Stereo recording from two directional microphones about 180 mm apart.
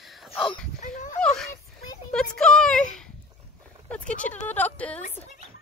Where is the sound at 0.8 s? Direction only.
45° left (ahead or behind).